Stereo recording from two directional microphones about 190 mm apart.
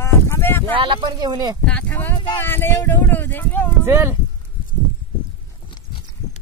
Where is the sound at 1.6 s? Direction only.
10° left (ahead or behind).